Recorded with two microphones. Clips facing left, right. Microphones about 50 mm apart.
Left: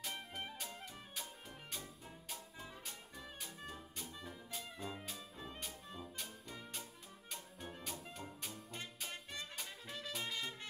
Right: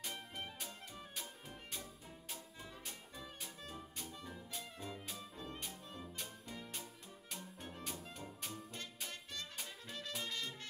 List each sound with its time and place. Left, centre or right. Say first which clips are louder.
0.1 s music: left 1 dB; centre
2.2 s music: left 1 dB; centre
3.2 s music: left 1 dB; centre
9.1 s music: left 1 dB; centre
9.6 s music: even; centre